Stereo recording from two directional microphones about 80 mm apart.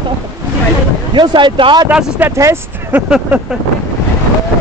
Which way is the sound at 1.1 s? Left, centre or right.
Right.